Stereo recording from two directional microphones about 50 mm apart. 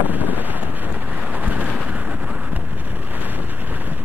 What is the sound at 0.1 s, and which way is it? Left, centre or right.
Wind noise, right.